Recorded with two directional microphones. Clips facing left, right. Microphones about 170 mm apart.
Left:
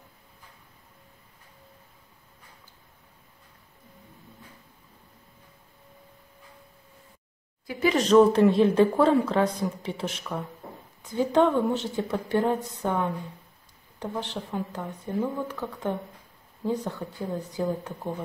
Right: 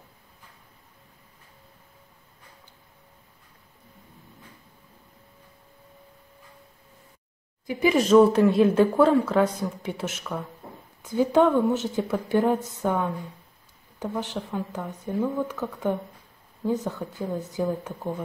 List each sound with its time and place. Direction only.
7.6 s speech: 10° right (ahead or behind)
17.3 s speech: centre (ahead or behind)